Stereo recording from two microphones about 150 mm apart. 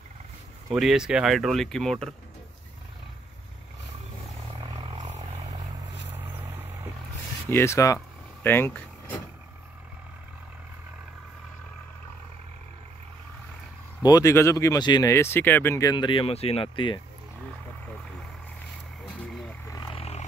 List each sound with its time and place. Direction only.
0.7 s speech: centre (ahead or behind)
4.6 s vehicle: 30° right (ahead or behind)
6.1 s vehicle: 15° right (ahead or behind)
7.5 s speech: 20° left (ahead or behind)
14.0 s speech: 20° left (ahead or behind)
19.9 s vehicle: 40° left (ahead or behind)